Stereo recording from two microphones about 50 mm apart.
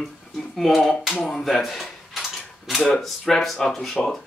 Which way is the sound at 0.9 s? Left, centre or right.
Centre.